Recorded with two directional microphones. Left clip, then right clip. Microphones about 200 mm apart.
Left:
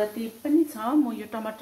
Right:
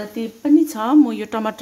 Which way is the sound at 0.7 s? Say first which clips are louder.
Right 9 dB; 65° right (ahead or behind).